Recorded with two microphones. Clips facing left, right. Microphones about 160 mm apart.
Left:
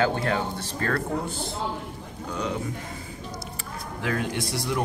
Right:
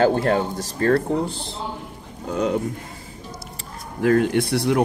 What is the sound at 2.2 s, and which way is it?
Speech, 50° right (ahead or behind).